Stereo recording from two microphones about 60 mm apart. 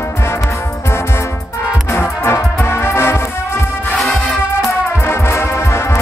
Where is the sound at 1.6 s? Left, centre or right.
Left.